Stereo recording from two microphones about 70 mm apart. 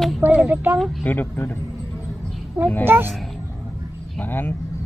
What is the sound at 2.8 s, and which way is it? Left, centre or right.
Speech, right.